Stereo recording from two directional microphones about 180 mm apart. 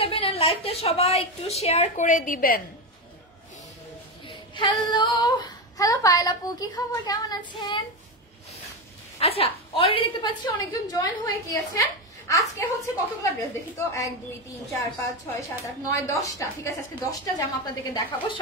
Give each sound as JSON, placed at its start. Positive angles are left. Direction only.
{"t": 0.0, "sound": "a woman's voice", "side_deg": 30}
{"t": 4.3, "sound": "speech", "side_deg": 25}
{"t": 9.2, "sound": "a woman's voice", "side_deg": 30}
{"t": 15.6, "sound": "a woman's voice", "side_deg": 15}